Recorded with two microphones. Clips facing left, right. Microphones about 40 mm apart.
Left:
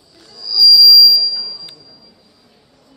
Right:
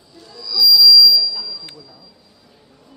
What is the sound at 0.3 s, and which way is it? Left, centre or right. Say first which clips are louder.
Music: left 3 dB; right.